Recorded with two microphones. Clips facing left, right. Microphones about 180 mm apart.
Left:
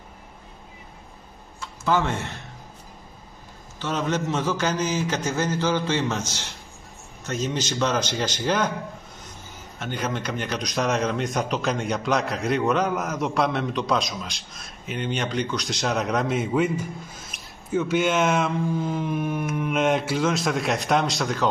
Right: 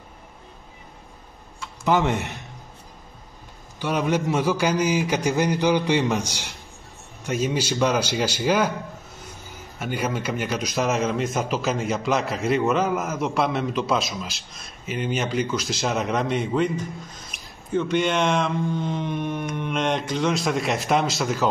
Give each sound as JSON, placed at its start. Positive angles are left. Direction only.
{"t": 1.9, "sound": "a man's voice", "side_deg": -15}
{"t": 3.8, "sound": "a man's voice", "side_deg": -10}
{"t": 9.8, "sound": "speech", "side_deg": -10}